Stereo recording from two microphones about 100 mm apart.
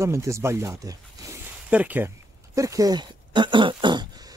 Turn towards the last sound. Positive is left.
turn(degrees=-50)  # may be behind; listen again after turning